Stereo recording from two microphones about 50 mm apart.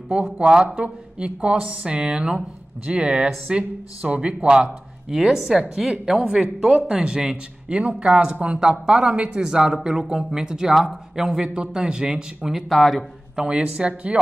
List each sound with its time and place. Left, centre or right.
0.4 s a woman's voice: centre
4.6 s speech: centre
11.4 s speech: centre
13.4 s a woman's voice: centre